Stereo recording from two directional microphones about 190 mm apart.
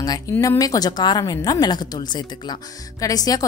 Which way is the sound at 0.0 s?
20° left (ahead or behind).